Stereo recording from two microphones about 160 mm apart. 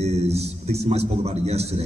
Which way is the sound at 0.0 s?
40° right (ahead or behind).